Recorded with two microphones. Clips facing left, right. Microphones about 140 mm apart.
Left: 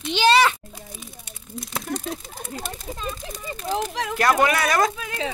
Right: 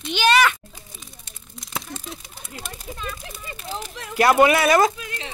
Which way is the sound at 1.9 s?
60° left (ahead or behind).